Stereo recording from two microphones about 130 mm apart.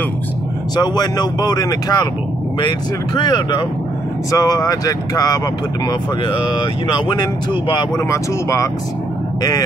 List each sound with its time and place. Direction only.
0.7 s speech: 30° left (ahead or behind)
3.2 s speech: 35° left (ahead or behind)
6.9 s speech: 35° left (ahead or behind)
8.1 s speech: 25° left (ahead or behind)